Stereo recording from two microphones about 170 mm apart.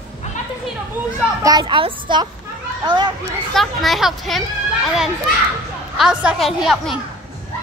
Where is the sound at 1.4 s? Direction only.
25° right (ahead or behind).